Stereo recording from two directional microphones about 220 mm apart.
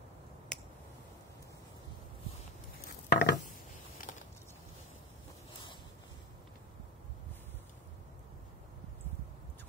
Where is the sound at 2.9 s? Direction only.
50° left (ahead or behind).